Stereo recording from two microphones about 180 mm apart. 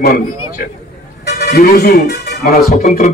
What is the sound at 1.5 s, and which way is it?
Speech, 60° left (ahead or behind).